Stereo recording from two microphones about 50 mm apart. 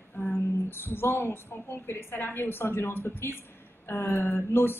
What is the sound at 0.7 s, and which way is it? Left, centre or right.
Speech, left.